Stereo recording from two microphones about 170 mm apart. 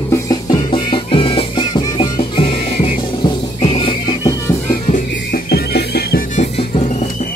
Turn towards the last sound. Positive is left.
turn(degrees=40)  # may be behind; listen again after turning